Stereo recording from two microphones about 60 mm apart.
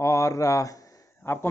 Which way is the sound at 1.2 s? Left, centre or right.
Left.